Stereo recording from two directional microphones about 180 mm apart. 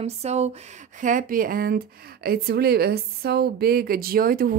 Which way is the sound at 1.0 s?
50° right (ahead or behind).